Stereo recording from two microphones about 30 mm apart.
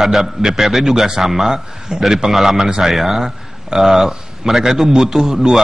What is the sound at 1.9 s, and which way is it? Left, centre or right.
Speech, right.